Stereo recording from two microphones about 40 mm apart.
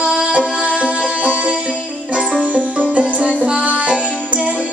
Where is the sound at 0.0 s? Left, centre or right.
Right.